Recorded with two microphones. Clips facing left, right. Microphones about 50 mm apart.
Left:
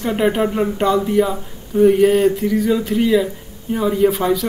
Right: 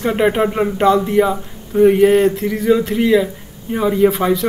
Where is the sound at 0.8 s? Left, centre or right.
Centre.